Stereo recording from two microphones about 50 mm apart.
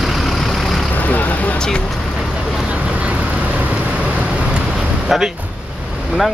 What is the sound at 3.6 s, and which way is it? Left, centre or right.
Vehicle, right.